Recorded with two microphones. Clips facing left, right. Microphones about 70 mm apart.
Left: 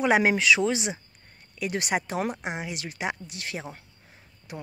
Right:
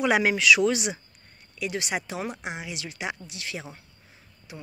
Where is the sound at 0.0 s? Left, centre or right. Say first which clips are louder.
Left 1 dB; left.